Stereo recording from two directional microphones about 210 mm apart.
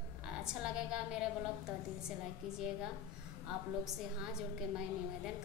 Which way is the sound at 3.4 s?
Centre (ahead or behind).